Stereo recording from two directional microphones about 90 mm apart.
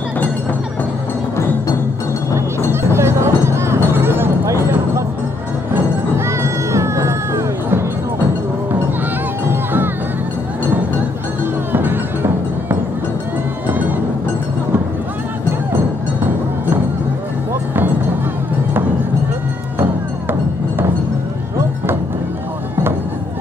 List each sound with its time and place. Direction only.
2.3 s music: 30° right (ahead or behind)
9.5 s music: 25° right (ahead or behind)
11.7 s music: 25° right (ahead or behind)